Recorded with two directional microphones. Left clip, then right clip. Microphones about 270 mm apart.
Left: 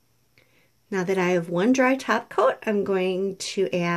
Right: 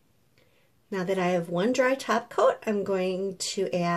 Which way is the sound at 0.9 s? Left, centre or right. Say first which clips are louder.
Left 3 dB; left.